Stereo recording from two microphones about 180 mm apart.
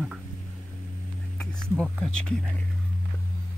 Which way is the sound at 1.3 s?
5° left (ahead or behind).